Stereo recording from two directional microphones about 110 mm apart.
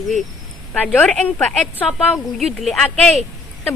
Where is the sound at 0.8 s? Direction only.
10° left (ahead or behind).